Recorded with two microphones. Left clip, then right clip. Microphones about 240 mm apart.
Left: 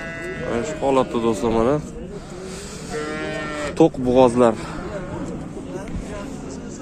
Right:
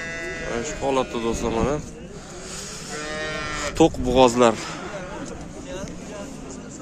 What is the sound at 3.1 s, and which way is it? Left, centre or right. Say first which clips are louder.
Cattle: left 1 dB; right.